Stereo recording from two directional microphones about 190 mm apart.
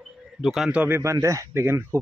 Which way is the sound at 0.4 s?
Centre (ahead or behind).